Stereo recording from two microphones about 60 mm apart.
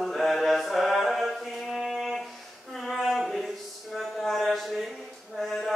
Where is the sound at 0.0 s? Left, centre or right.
Centre.